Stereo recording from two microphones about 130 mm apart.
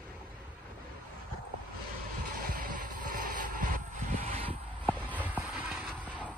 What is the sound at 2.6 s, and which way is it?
Vehicle, 90° right.